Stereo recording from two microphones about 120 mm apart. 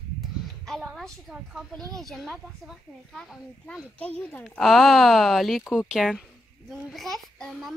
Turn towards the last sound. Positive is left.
turn(degrees=0)  # may be behind; listen again after turning